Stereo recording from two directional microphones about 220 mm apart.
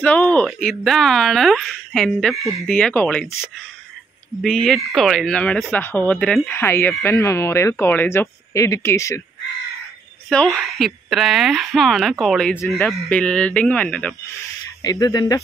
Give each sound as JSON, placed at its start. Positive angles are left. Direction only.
{"t": 0.0, "sound": "speech", "side_deg": 5}
{"t": 10.3, "sound": "speech", "side_deg": 5}
{"t": 14.8, "sound": "speech", "side_deg": 15}